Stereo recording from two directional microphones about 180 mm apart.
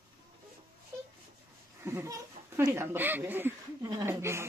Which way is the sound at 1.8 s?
15° right (ahead or behind).